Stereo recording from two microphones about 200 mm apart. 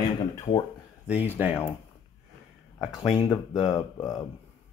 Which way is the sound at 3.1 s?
20° left (ahead or behind).